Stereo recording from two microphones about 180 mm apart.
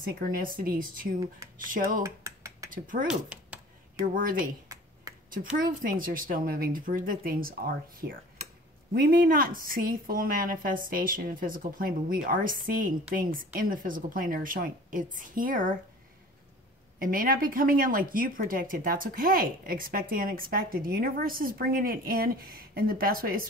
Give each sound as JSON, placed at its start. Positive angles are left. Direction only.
{"t": 0.1, "sound": "speech", "side_deg": -55}
{"t": 2.0, "sound": "a sound", "side_deg": -15}
{"t": 2.7, "sound": "speech", "side_deg": -50}
{"t": 3.1, "sound": "speech", "side_deg": -5}
{"t": 4.0, "sound": "speech", "side_deg": -50}
{"t": 5.1, "sound": "a sound", "side_deg": -20}
{"t": 5.6, "sound": "speech", "side_deg": -50}
{"t": 8.4, "sound": "a sound", "side_deg": -40}
{"t": 8.9, "sound": "speech", "side_deg": -55}
{"t": 17.0, "sound": "speech", "side_deg": -50}